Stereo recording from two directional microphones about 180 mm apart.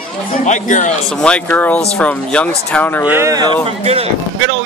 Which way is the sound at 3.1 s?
15° right (ahead or behind).